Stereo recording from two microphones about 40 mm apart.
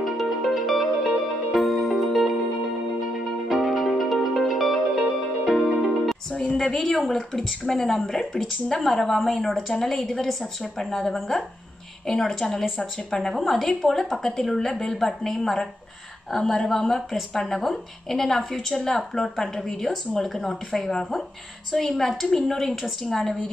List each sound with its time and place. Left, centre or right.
0.0 s music: centre
3.4 s music: centre
6.5 s a woman's voice: centre